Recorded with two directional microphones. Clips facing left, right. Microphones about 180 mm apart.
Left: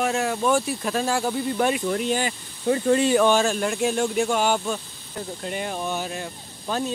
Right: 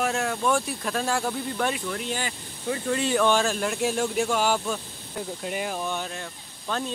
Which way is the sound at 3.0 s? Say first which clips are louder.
Left 1 dB; 15° left (ahead or behind).